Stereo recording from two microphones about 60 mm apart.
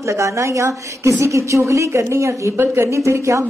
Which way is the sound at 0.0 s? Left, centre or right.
Right.